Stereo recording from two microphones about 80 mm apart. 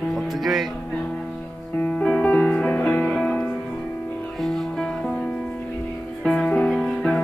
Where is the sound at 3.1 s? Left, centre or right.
Centre.